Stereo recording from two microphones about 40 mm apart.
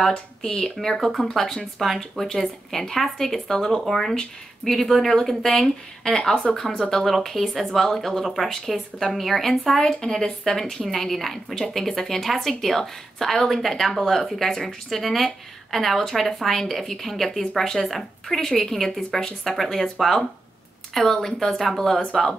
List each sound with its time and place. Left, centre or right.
0.0 s a woman's voice: centre
0.7 s a woman's voice: centre
3.8 s speech: centre
4.1 s a woman's voice: centre
7.1 s a woman's voice: centre